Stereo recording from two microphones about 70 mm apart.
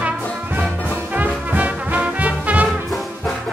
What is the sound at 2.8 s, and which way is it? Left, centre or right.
Brass instrument, centre.